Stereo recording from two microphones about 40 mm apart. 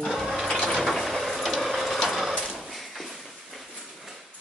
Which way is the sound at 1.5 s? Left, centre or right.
Centre.